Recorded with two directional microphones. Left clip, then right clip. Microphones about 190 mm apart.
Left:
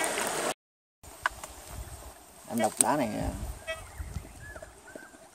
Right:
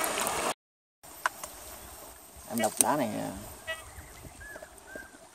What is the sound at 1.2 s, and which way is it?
Insect, 40° right (ahead or behind).